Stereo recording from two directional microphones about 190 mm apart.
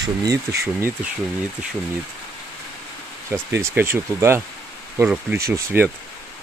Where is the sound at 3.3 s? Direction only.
15° right (ahead or behind).